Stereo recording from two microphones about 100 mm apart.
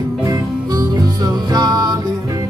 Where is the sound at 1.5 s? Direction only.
40° right (ahead or behind).